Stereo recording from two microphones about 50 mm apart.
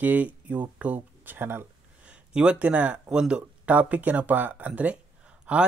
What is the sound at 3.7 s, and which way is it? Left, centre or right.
Speech, right.